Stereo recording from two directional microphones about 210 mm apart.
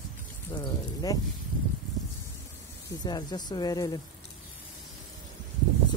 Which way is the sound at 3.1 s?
20° left (ahead or behind).